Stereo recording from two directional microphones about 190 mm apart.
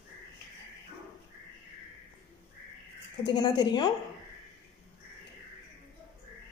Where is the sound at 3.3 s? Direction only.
20° left (ahead or behind).